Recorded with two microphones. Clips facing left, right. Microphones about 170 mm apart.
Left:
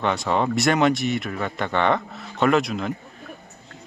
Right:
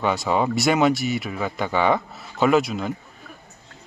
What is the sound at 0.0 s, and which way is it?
Speech, 5° right (ahead or behind).